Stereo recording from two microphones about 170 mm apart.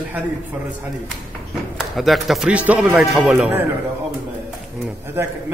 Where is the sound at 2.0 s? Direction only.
Centre (ahead or behind).